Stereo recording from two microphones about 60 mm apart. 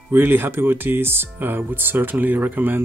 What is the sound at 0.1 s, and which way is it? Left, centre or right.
Speech, right.